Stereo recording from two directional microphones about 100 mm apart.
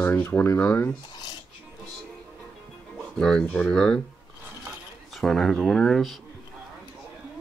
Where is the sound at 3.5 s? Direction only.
15° left (ahead or behind).